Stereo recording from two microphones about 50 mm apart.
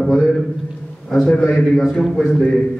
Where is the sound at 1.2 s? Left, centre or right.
Left.